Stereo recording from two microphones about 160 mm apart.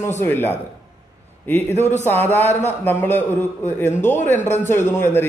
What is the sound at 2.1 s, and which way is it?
A man's voice, 10° left (ahead or behind).